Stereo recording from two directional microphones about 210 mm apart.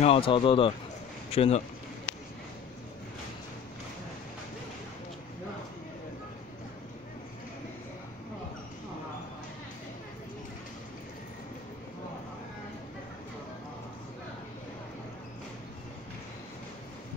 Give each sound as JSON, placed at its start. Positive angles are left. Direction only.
{"t": 0.0, "sound": "speech", "side_deg": 25}